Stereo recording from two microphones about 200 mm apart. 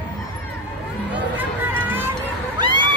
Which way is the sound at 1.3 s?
10° right (ahead or behind).